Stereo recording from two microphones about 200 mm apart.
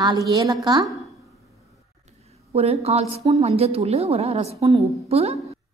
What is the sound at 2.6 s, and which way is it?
A woman's voice, 30° right (ahead or behind).